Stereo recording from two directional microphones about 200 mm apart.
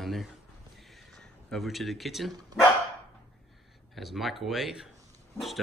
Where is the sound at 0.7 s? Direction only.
Centre (ahead or behind).